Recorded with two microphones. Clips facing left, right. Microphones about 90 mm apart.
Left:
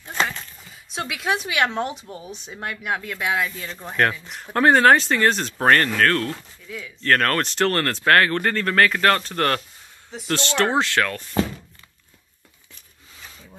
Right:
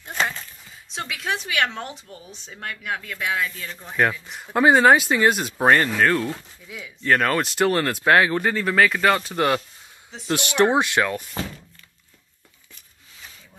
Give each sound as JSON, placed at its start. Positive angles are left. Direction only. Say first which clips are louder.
{"t": 0.0, "sound": "a sound", "louder": "left 1 dB", "side_deg": -5}
{"t": 0.8, "sound": "speech", "louder": "left 3 dB", "side_deg": 10}
{"t": 3.9, "sound": "speech", "louder": "even", "side_deg": 0}